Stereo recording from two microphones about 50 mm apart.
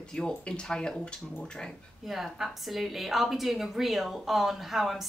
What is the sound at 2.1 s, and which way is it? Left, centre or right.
A woman's voice, centre.